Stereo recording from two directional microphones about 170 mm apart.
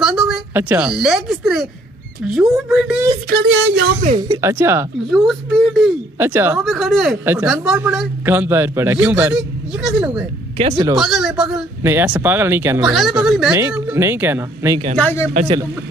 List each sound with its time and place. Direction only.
0.0 s a woman's voice: 5° right (ahead or behind)
3.3 s a sound: 85° right
4.2 s a man's voice: 20° right (ahead or behind)
5.1 s speech: centre (ahead or behind)
6.1 s a man's voice: 15° right (ahead or behind)
6.6 s speech: centre (ahead or behind)
8.3 s a man's voice: 15° right (ahead or behind)
10.6 s speech: 35° right (ahead or behind)
11.0 s speech: centre (ahead or behind)
11.8 s a man's voice: 10° right (ahead or behind)
12.8 s speech: centre (ahead or behind)
13.5 s a man's voice: 15° right (ahead or behind)
15.0 s speech: 10° left (ahead or behind)